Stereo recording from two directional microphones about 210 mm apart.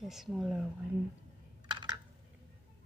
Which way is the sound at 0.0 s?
Centre (ahead or behind).